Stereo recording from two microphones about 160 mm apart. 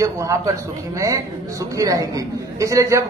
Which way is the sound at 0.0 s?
20° right (ahead or behind).